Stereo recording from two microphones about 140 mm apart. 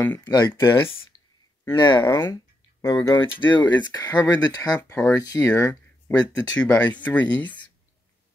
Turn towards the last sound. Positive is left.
turn(degrees=10)  # may be behind; listen again after turning